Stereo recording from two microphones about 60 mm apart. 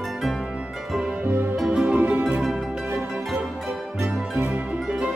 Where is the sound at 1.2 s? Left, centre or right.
Right.